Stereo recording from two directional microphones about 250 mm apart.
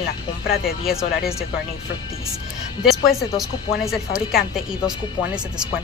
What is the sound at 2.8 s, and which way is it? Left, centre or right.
A woman's voice, centre.